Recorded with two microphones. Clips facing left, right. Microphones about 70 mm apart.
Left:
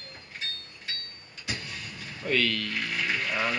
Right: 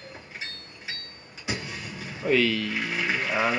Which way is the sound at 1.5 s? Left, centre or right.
Centre.